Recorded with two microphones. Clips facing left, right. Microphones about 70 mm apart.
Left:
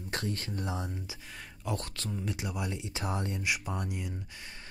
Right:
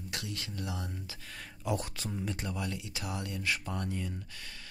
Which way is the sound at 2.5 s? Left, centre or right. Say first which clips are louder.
Left 1 dB; left.